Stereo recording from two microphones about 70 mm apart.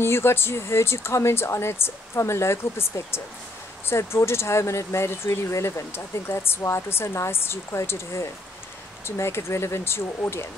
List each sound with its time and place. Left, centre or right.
0.0 s speech: left